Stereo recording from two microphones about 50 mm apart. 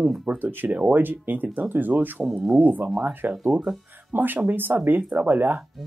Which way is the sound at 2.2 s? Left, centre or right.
Centre.